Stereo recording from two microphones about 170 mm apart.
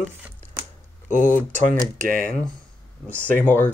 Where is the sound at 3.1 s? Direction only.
10° left (ahead or behind).